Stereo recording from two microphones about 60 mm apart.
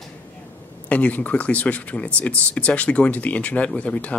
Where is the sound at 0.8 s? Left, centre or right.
Left.